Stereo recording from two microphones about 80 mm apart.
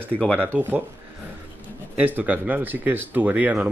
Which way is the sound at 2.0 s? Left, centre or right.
Right.